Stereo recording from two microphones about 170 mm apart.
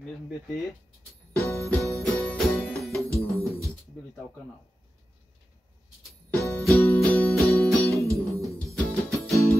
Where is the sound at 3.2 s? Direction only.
15° right (ahead or behind).